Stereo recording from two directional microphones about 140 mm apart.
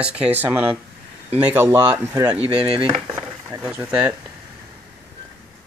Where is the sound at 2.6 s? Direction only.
45° right (ahead or behind).